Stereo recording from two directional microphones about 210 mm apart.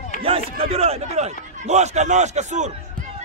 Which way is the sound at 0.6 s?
30° right (ahead or behind).